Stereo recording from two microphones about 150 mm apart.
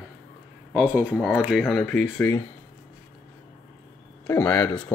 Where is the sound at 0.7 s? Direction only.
10° right (ahead or behind); by 2.4 s 10° left (ahead or behind).